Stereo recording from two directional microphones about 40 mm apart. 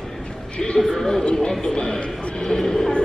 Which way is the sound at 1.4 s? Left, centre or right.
Left.